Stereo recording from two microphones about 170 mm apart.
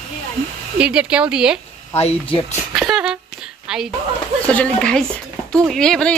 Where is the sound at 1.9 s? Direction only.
40° left (ahead or behind).